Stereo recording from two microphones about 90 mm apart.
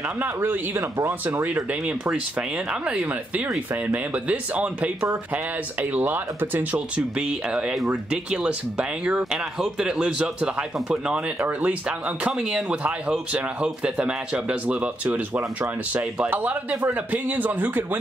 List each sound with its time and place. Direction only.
0.2 s speech: 20° right (ahead or behind)
7.2 s speech: 10° right (ahead or behind)